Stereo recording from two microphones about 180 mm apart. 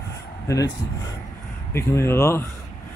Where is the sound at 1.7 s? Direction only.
15° left (ahead or behind).